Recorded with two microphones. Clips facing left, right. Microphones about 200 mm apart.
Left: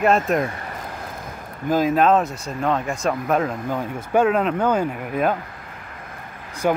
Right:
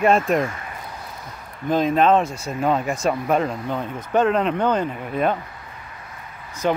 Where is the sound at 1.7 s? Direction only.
5° left (ahead or behind).